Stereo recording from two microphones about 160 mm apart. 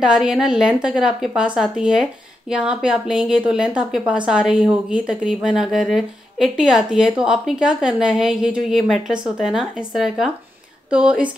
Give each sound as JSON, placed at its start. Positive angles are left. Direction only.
{"t": 0.0, "sound": "a woman's voice", "side_deg": -5}